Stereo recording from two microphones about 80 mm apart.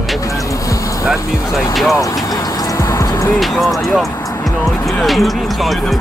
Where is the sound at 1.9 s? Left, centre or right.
Left.